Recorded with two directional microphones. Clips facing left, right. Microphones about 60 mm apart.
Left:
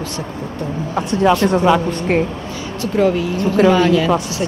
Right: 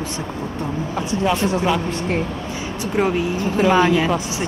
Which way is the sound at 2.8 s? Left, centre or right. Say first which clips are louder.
Left 4 dB; right.